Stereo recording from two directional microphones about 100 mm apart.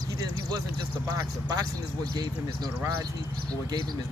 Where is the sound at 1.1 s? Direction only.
40° right (ahead or behind).